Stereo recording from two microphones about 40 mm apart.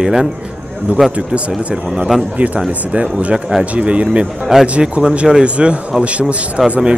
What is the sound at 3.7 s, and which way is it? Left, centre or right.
Speech, right.